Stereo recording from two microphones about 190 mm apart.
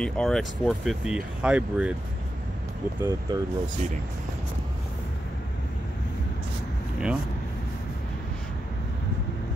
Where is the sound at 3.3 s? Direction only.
25° right (ahead or behind).